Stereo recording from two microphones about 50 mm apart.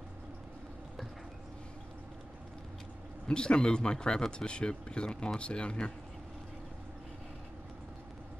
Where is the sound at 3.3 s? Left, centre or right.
Centre.